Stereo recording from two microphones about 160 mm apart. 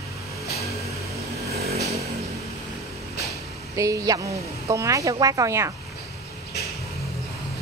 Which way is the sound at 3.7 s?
20° right (ahead or behind).